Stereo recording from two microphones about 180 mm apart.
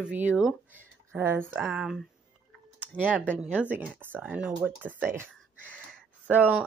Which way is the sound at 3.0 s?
10° right (ahead or behind).